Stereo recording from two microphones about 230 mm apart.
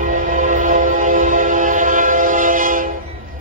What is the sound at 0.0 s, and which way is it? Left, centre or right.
Train, right.